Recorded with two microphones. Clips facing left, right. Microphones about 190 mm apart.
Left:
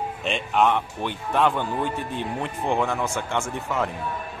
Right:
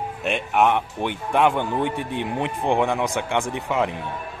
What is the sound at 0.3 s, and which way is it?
A man's voice, 15° right (ahead or behind).